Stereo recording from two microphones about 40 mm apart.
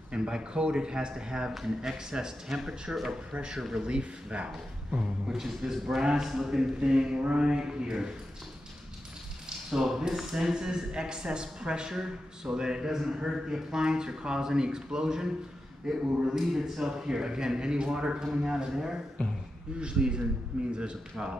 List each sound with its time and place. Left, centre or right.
0.1 s speech: right
1.5 s a man's voice: centre
3.3 s speech: right
5.3 s a man's voice: centre
9.7 s a man's voice: centre
17.0 s a man's voice: centre
19.2 s speech: left
19.8 s speech: right